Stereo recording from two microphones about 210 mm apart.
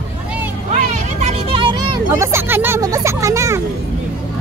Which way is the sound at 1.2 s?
25° right (ahead or behind).